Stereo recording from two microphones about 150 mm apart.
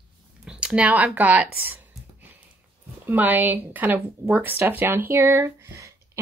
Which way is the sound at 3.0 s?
10° right (ahead or behind).